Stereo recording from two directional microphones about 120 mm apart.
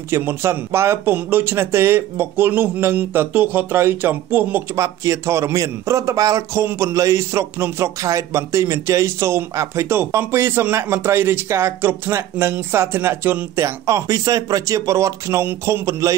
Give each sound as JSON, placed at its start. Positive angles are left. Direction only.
{"t": 0.1, "sound": "speech", "side_deg": -20}